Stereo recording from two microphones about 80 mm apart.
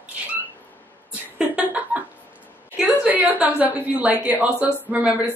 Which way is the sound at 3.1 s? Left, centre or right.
Right.